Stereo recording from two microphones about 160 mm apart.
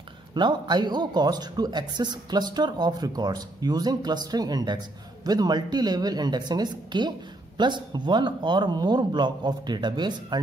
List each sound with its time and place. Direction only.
0.3 s a woman's voice: 25° right (ahead or behind)